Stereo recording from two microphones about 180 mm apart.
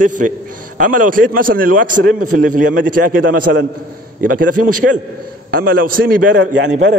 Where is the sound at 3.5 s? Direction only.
65° right (ahead or behind).